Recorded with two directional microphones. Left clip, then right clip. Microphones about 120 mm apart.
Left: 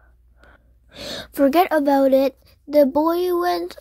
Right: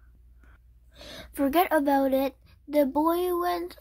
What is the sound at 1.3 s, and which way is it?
A child's voice, 45° left (ahead or behind).